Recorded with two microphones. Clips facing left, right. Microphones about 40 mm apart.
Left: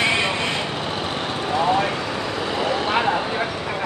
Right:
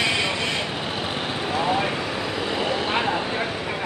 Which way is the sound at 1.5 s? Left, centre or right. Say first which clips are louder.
Left 4 dB; centre.